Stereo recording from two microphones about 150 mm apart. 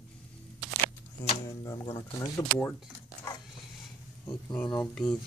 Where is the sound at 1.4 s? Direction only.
20° left (ahead or behind).